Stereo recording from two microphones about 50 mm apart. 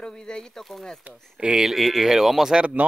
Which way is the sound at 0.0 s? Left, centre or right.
Centre.